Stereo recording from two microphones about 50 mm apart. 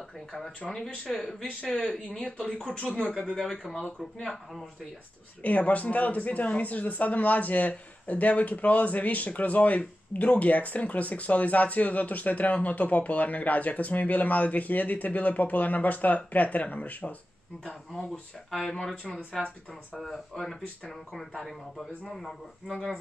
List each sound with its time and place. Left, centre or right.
0.7 s speech: centre
1.4 s speech: left
3.2 s speech: centre
5.4 s speech: left
19.4 s speech: centre